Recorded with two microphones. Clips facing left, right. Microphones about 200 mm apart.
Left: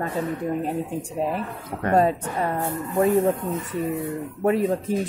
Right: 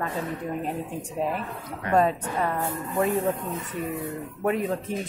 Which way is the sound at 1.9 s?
35° left (ahead or behind).